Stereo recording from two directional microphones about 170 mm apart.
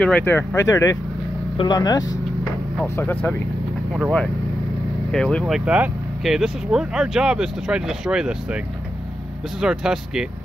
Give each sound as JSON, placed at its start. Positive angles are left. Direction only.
{"t": 0.0, "sound": "speech", "side_deg": 10}
{"t": 2.8, "sound": "speech", "side_deg": 10}
{"t": 5.1, "sound": "speech", "side_deg": 5}
{"t": 9.6, "sound": "speech", "side_deg": -5}